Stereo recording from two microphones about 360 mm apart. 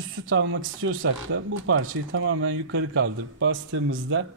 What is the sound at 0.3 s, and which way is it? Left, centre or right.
Speech, right.